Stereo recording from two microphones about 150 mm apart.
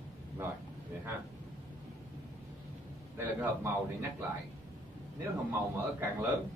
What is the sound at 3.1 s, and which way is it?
Speech, 15° right (ahead or behind).